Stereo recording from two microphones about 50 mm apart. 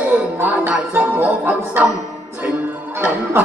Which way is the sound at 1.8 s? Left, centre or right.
Right.